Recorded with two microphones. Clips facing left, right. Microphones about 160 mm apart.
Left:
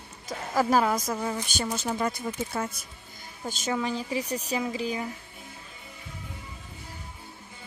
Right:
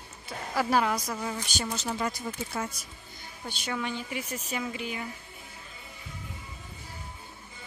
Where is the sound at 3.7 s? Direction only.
35° left (ahead or behind).